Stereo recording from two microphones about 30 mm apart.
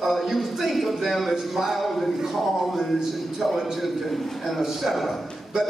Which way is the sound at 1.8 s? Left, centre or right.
Centre.